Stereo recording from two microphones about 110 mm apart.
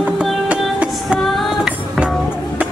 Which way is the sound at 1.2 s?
Centre (ahead or behind).